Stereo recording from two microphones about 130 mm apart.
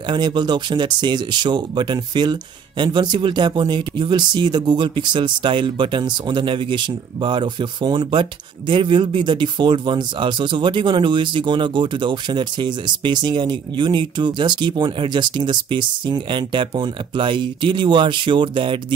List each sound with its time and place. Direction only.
0.1 s speech: 35° right (ahead or behind)